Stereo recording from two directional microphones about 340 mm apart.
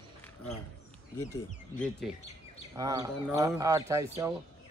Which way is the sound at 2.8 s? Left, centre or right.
Centre.